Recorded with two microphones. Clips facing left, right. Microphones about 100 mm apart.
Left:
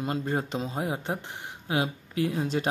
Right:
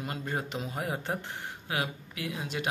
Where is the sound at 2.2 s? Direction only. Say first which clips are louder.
Left 9 dB; 35° left (ahead or behind).